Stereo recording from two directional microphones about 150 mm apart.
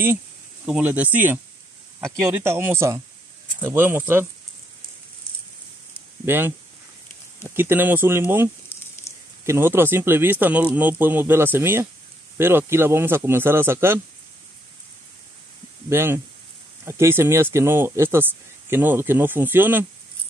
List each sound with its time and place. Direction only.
0.7 s speech: 5° right (ahead or behind)
6.2 s speech: 15° right (ahead or behind)
8.7 s sizzle: 15° left (ahead or behind)
9.4 s speech: 15° right (ahead or behind)
15.9 s speech: 15° right (ahead or behind)